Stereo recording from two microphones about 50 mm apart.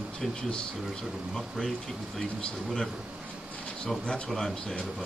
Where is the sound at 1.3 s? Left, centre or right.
Centre.